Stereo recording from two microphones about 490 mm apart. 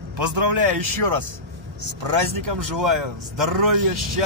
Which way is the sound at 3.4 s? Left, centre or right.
Right.